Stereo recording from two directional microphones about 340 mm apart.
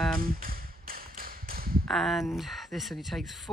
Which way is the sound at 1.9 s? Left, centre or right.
Centre.